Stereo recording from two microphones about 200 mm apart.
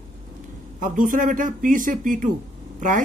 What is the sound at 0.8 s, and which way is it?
Speech, 40° right (ahead or behind).